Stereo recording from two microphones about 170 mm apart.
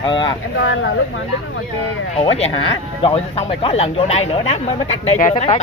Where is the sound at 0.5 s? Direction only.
90° left.